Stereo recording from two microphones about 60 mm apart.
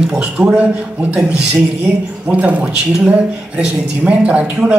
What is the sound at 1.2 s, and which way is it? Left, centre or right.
Speech, centre.